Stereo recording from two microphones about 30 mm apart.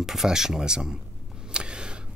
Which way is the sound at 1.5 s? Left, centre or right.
Right.